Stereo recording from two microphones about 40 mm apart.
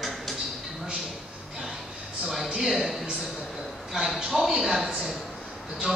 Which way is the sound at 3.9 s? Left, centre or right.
Centre.